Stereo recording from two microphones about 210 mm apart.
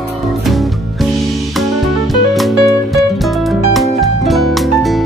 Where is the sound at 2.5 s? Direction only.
15° left (ahead or behind).